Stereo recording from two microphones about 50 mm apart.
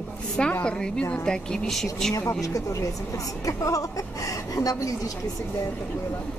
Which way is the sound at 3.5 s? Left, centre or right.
Left.